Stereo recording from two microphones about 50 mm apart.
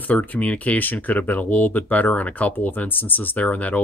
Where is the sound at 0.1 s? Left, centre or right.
Left.